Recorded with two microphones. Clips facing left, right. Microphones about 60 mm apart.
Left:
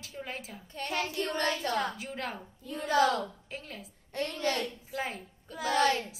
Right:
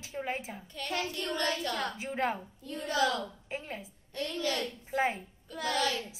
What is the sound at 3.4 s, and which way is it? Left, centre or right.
Speech, right.